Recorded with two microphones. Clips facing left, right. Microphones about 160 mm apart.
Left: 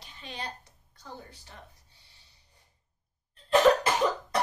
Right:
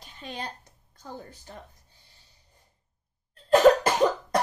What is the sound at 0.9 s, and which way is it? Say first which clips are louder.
Speech: right 4 dB; 45° right (ahead or behind).